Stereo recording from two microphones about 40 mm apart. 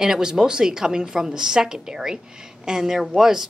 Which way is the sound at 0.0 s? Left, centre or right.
Centre.